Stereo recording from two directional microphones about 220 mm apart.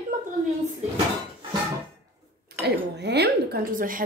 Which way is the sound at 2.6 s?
50° right (ahead or behind).